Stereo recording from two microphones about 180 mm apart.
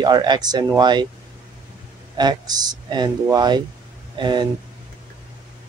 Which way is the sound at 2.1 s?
20° right (ahead or behind).